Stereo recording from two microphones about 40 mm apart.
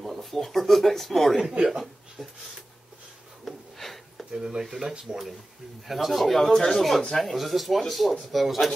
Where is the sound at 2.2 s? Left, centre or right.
Centre.